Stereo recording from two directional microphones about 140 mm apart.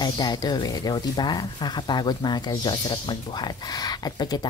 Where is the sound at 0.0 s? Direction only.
30° left (ahead or behind).